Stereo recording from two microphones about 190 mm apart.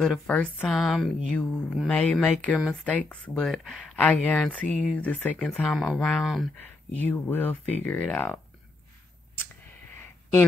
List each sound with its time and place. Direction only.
0.0 s speech: 5° left (ahead or behind)